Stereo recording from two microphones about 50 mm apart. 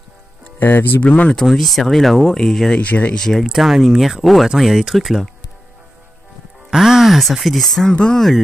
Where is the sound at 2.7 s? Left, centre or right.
Left.